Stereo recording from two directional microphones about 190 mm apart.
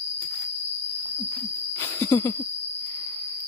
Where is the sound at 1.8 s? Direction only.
15° left (ahead or behind).